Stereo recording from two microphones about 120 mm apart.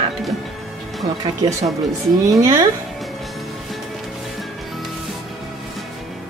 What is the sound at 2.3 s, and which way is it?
Speech, 25° right (ahead or behind).